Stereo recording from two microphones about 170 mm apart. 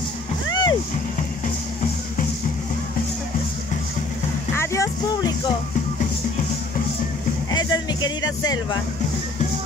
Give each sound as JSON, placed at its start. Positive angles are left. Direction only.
{"t": 0.5, "sound": "music", "side_deg": 25}
{"t": 4.6, "sound": "music", "side_deg": 15}
{"t": 7.5, "sound": "music", "side_deg": 25}